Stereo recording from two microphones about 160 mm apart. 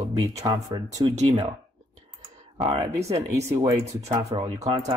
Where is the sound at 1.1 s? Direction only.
45° right (ahead or behind).